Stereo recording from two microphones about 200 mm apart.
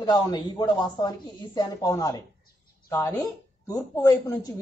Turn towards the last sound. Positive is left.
turn(degrees=15)  # may be behind; listen again after turning